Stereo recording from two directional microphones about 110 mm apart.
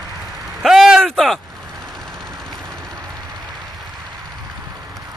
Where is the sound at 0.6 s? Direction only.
5° right (ahead or behind).